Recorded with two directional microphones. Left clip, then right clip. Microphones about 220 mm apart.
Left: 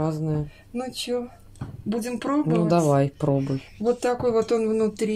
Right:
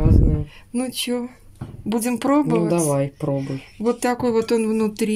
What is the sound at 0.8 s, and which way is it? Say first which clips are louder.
Speech: right 1 dB; 40° right (ahead or behind).